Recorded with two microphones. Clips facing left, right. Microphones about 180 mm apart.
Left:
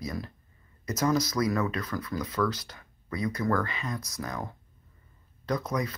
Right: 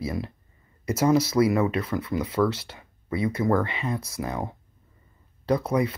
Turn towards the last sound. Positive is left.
turn(degrees=-30)  # may be behind; listen again after turning